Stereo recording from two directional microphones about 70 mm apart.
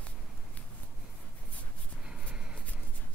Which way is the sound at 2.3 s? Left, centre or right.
Centre.